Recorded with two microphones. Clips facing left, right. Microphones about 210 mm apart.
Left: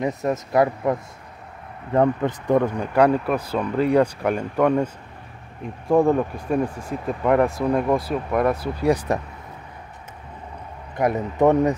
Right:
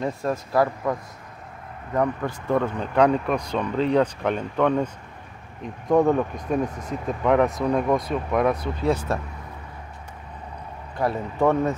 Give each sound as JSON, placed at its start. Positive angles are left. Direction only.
{"t": 0.0, "sound": "speech", "side_deg": 20}
{"t": 2.0, "sound": "speech", "side_deg": 20}
{"t": 6.7, "sound": "speech", "side_deg": 30}
{"t": 7.1, "sound": "speech", "side_deg": 5}
{"t": 11.0, "sound": "speech", "side_deg": 20}